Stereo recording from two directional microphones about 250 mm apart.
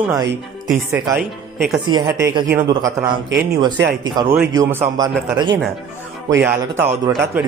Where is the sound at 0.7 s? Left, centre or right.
Centre.